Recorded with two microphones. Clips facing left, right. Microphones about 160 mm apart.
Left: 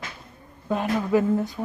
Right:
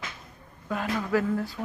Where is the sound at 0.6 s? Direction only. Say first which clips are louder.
Left 5 dB; 20° left (ahead or behind).